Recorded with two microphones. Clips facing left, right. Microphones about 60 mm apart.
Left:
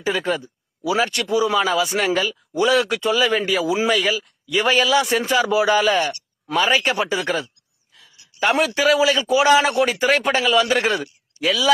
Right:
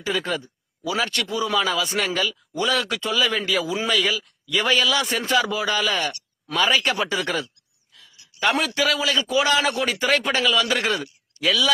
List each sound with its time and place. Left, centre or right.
0.2 s speech: centre
3.4 s speech: centre
4.0 s speech: centre